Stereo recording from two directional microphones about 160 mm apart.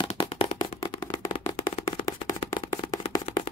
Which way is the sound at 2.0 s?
25° left (ahead or behind).